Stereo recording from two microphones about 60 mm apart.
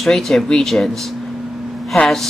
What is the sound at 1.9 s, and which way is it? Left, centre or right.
Speech, centre.